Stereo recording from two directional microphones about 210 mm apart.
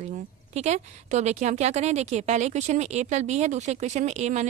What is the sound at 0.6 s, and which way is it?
A woman's voice, 30° right (ahead or behind).